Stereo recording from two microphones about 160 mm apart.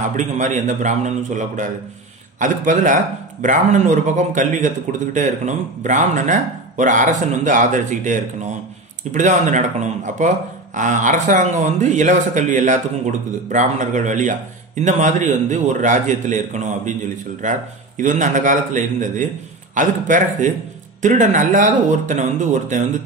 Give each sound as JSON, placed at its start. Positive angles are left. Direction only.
{"t": 0.1, "sound": "speech", "side_deg": -50}